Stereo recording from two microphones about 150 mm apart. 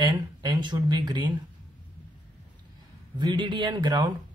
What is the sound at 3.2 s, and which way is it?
Speech, 30° right (ahead or behind).